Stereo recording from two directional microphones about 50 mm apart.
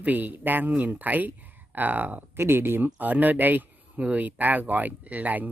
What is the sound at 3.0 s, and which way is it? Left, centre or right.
Speech, right.